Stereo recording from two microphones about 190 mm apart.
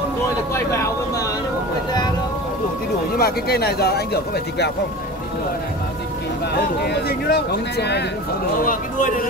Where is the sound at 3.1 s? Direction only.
55° left (ahead or behind).